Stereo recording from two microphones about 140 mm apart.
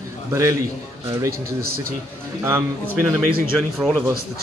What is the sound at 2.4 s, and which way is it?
Speech, 20° right (ahead or behind).